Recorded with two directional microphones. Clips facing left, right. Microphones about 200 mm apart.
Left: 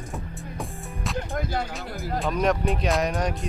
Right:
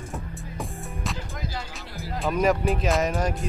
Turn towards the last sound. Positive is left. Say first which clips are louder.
# right 1 dB
turn(degrees=0)  # may be behind; listen again after turning